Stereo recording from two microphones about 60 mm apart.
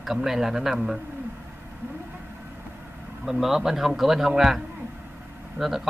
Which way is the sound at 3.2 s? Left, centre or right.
Centre.